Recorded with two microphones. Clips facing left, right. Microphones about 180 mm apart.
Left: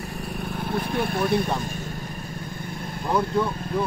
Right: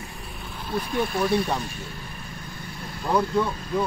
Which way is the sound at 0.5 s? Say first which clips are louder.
Left 1 dB; 55° left (ahead or behind).